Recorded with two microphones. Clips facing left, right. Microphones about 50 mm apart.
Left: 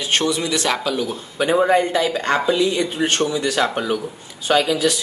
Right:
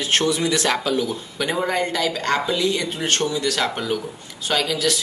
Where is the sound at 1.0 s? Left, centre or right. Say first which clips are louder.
Left 3 dB; left.